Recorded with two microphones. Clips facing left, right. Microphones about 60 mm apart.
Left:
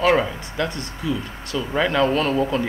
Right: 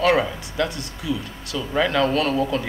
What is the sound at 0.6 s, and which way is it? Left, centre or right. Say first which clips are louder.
Speech: left 2 dB; left.